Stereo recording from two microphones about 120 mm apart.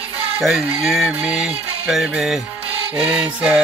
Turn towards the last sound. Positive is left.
turn(degrees=-10)  # may be behind; listen again after turning